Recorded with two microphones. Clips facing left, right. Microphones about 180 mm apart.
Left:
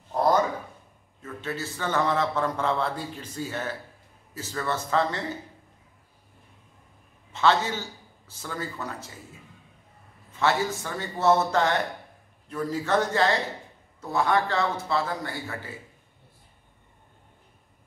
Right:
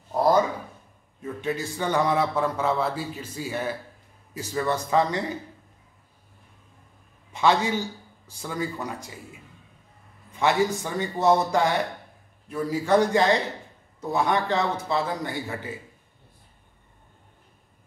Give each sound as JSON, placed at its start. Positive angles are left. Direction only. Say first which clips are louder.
{"t": 0.1, "sound": "a sound", "louder": "right 1 dB", "side_deg": -10}
{"t": 1.2, "sound": "a man's voice", "louder": "right 4 dB", "side_deg": -15}
{"t": 7.3, "sound": "a man's voice", "louder": "right 1 dB", "side_deg": -15}
{"t": 10.3, "sound": "a man's voice", "louder": "right 3 dB", "side_deg": -15}